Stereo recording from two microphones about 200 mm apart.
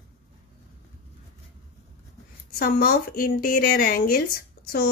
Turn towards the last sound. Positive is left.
turn(degrees=50)  # may be behind; listen again after turning